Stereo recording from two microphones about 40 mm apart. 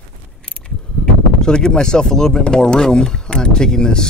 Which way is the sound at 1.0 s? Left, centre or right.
Centre.